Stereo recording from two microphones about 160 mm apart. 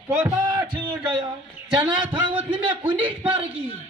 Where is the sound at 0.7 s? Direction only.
30° right (ahead or behind).